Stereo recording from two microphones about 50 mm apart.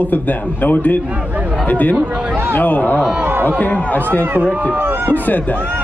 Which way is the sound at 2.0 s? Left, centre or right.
Centre.